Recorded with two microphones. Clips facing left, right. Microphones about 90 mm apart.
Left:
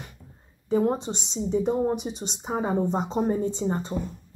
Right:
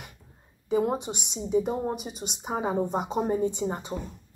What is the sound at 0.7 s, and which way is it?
Speech, 15° right (ahead or behind).